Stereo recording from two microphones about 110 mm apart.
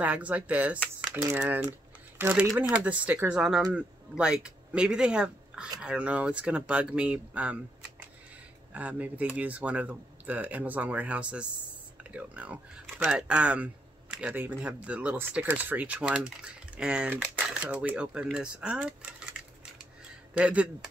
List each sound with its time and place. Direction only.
0.0 s speech: 15° right (ahead or behind)
8.7 s speech: 15° right (ahead or behind)
20.3 s speech: 10° right (ahead or behind)